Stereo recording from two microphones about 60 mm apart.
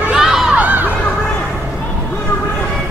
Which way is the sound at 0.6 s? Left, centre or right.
Right.